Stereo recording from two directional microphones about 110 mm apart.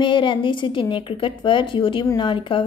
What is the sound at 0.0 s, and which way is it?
A woman's voice, 50° left (ahead or behind).